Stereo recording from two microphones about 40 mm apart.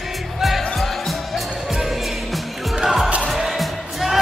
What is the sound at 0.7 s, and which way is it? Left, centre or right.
Music, centre.